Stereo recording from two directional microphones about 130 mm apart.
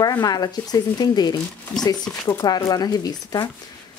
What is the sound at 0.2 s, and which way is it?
Speech, 30° left (ahead or behind).